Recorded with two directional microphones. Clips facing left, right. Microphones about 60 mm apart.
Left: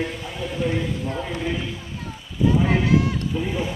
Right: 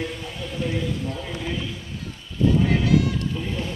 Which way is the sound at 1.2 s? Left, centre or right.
Centre.